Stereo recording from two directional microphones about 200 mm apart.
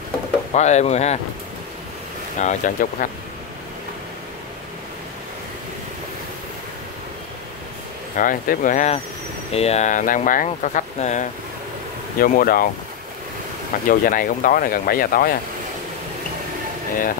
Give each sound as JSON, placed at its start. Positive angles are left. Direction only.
{"t": 0.5, "sound": "speech", "side_deg": 35}
{"t": 2.3, "sound": "speech", "side_deg": 40}
{"t": 8.2, "sound": "speech", "side_deg": 40}
{"t": 13.8, "sound": "speech", "side_deg": 45}